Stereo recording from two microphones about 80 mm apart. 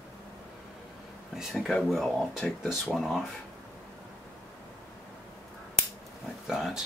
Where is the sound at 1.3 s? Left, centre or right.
Centre.